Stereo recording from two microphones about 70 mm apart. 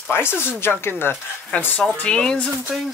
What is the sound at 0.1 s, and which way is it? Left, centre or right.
Speech, left.